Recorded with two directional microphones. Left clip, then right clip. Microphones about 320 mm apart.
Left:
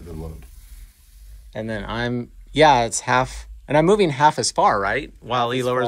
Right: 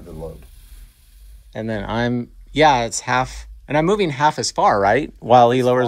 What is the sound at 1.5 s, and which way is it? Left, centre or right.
Speech, centre.